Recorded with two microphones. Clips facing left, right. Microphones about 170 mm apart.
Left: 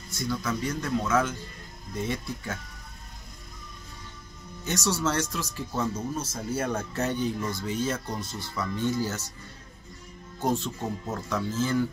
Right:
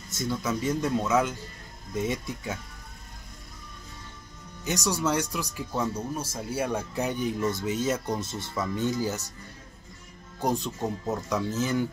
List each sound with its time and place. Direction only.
0.2 s speech: 20° right (ahead or behind)
4.6 s speech: 15° right (ahead or behind)
10.4 s speech: 15° right (ahead or behind)